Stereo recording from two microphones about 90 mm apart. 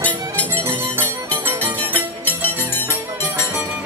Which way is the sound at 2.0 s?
20° left (ahead or behind).